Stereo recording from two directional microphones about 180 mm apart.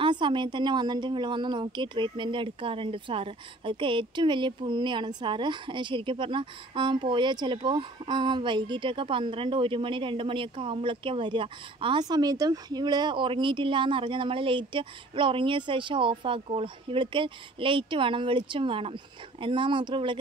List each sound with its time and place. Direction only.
0.0 s a woman's voice: 25° right (ahead or behind)